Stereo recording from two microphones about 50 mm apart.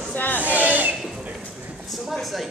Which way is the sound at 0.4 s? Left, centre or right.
Right.